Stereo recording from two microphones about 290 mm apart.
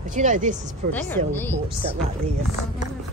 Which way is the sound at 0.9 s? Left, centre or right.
Centre.